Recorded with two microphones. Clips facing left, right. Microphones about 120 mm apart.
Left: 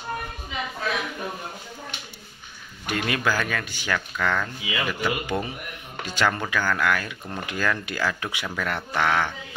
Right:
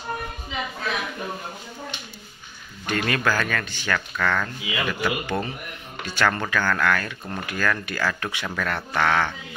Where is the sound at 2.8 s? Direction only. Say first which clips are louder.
Right 1 dB; 15° left (ahead or behind).